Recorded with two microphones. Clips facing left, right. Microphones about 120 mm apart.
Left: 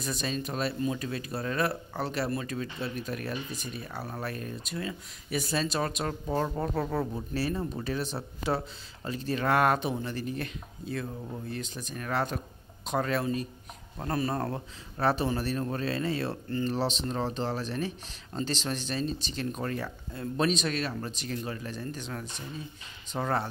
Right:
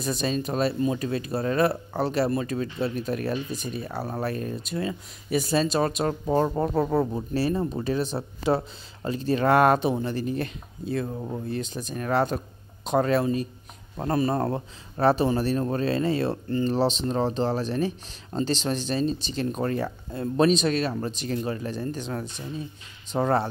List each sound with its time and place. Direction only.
0.0 s speech: 30° right (ahead or behind)